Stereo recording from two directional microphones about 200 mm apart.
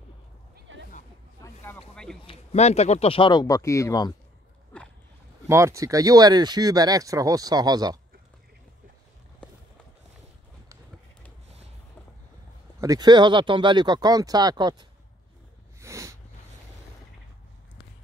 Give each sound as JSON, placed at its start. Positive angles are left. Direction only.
{"t": 0.6, "sound": "a sound", "side_deg": -65}
{"t": 1.4, "sound": "a sound", "side_deg": 10}
{"t": 2.2, "sound": "speech", "side_deg": 35}
{"t": 5.5, "sound": "speech", "side_deg": -15}
{"t": 12.8, "sound": "speech", "side_deg": -20}
{"t": 15.8, "sound": "snort", "side_deg": -15}